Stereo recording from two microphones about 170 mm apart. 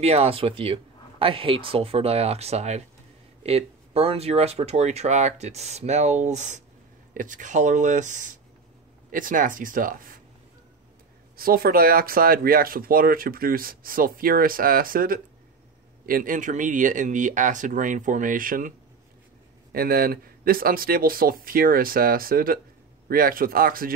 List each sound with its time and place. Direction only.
0.0 s speech: 35° right (ahead or behind); by 10.2 s 55° right (ahead or behind)
11.3 s speech: 60° right (ahead or behind)
19.7 s speech: 60° right (ahead or behind)